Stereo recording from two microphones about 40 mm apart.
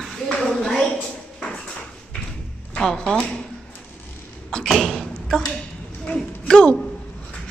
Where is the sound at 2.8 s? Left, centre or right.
Centre.